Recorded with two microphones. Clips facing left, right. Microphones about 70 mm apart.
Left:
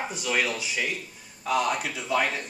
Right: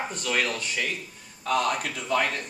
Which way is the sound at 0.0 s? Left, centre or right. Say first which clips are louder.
Even; centre.